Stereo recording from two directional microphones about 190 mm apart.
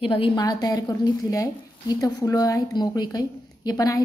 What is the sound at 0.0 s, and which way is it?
A woman's voice, 25° left (ahead or behind).